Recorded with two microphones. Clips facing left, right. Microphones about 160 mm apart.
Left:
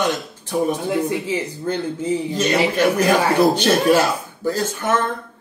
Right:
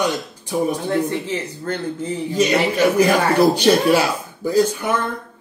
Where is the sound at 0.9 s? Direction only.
10° left (ahead or behind).